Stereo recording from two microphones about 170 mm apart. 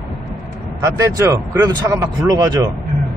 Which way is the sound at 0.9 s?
20° right (ahead or behind).